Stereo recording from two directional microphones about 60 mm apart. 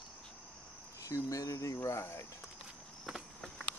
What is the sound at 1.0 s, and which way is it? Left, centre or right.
Speech, left.